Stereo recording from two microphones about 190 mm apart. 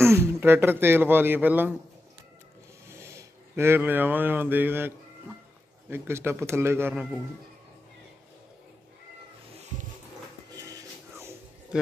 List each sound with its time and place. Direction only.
0.0 s a man's voice: 15° right (ahead or behind)
2.9 s a man's voice: 15° right (ahead or behind)
10.7 s music: 20° right (ahead or behind)